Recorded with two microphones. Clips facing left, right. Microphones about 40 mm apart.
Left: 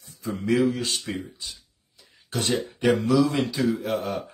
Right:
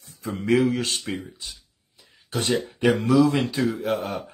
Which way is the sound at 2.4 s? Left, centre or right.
Right.